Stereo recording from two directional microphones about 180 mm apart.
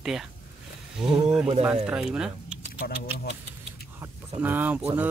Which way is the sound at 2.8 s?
55° left (ahead or behind).